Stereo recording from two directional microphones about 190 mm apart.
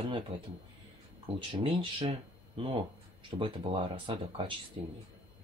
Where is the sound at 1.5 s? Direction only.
25° right (ahead or behind).